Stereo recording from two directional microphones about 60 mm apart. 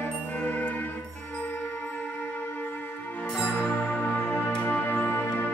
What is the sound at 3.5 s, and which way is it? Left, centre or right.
Music, left.